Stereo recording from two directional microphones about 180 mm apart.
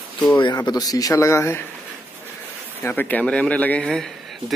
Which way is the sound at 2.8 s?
10° left (ahead or behind).